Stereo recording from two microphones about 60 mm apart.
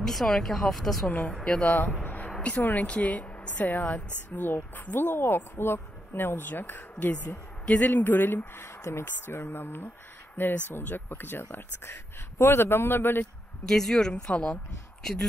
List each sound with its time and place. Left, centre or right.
0.0 s speech: centre
1.0 s a woman's voice: centre
1.6 s speech: left
7.9 s speech: left
13.7 s a woman's voice: centre